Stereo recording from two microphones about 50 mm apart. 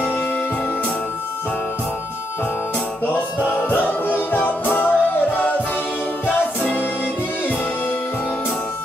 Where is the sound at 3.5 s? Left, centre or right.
Left.